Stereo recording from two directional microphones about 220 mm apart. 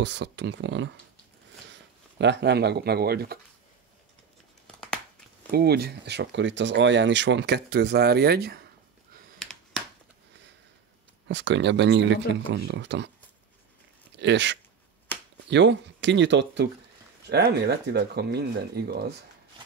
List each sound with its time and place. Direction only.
0.0 s speech: 50° right (ahead or behind)
5.5 s speech: 45° right (ahead or behind)
9.4 s a sound: centre (ahead or behind)
11.2 s speech: 55° right (ahead or behind)
14.1 s speech: 55° right (ahead or behind)